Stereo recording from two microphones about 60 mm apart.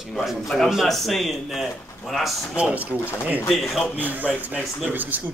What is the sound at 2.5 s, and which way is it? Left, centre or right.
Speech, right.